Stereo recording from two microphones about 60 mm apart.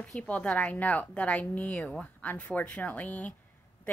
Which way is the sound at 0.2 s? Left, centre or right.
Left.